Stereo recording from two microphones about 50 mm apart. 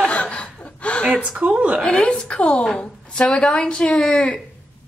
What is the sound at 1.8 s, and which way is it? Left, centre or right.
A woman's voice, centre.